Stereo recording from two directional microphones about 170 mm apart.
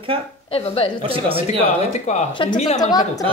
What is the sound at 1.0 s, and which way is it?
Speech, 35° right (ahead or behind).